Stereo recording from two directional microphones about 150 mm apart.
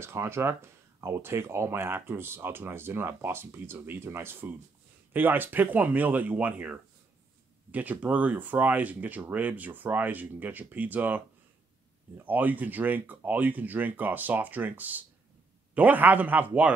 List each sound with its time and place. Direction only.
0.0 s speech: 15° right (ahead or behind)